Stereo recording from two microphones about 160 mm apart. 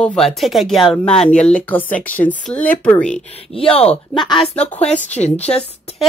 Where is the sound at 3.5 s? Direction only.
35° left (ahead or behind).